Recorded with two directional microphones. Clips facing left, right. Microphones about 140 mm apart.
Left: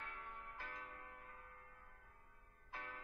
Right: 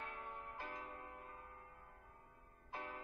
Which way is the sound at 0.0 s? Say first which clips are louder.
Right 4 dB; 25° right (ahead or behind).